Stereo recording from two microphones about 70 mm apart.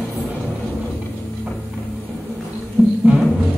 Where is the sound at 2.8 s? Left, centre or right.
Centre.